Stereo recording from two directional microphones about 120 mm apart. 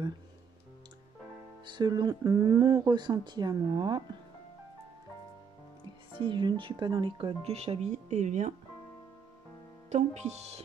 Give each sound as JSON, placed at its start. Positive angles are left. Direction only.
{"t": 1.7, "sound": "speech", "side_deg": -35}
{"t": 6.1, "sound": "speech", "side_deg": -40}
{"t": 9.8, "sound": "speech", "side_deg": -75}